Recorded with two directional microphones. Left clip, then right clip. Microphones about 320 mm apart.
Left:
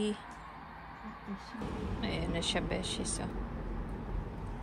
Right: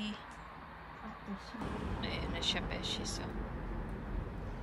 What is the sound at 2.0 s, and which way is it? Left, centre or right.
Speech, centre.